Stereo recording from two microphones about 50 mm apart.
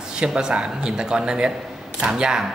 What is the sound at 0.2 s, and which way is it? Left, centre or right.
Speech, centre.